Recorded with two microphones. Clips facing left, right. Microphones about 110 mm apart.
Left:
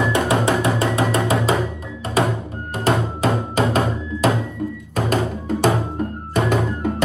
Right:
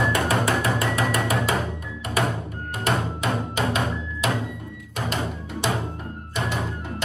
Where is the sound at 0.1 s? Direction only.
25° left (ahead or behind).